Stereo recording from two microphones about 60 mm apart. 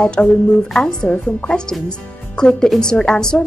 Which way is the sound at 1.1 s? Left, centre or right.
Left.